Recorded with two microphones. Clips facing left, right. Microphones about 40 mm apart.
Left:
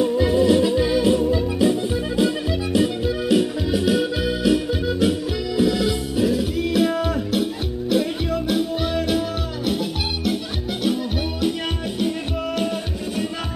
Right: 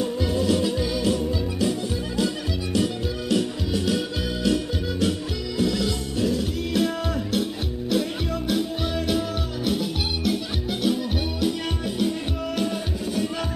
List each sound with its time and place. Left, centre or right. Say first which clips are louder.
0.0 s music: left 7 dB; centre
5.6 s music: left 4 dB; centre
7.9 s music: left 4 dB; centre